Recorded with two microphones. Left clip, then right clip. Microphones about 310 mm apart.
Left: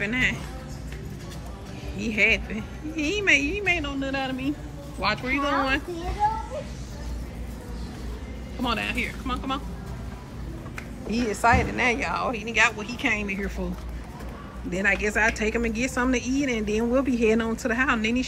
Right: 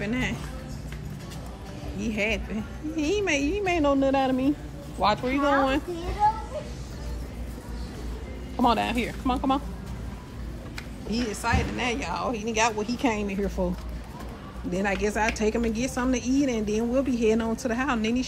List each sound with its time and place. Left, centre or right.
0.0 s music: centre
2.0 s a woman's voice: centre
6.2 s a sound: centre
8.6 s a woman's voice: centre
11.1 s a woman's voice: centre
14.7 s a woman's voice: centre